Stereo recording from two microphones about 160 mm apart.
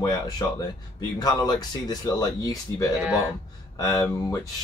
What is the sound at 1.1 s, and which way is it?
Speech, 25° left (ahead or behind).